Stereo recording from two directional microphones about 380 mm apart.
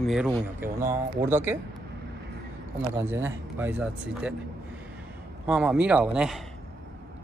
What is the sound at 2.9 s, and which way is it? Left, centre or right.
Speech, centre.